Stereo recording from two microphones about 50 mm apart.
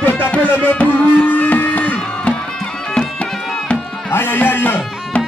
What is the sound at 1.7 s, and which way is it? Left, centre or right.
Music, left.